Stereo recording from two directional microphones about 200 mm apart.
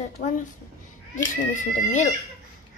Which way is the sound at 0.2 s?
40° left (ahead or behind).